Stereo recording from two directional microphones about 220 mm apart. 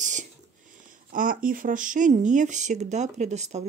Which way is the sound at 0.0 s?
35° right (ahead or behind).